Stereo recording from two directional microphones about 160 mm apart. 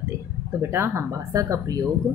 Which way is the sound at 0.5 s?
15° right (ahead or behind).